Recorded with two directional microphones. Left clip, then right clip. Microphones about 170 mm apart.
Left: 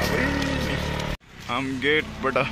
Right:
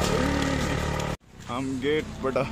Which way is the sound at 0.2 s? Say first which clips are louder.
Left 2 dB; 35° right (ahead or behind).